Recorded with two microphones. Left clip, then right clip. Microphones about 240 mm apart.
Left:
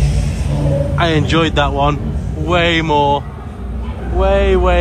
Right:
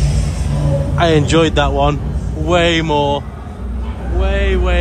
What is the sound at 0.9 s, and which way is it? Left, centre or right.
Speech, centre.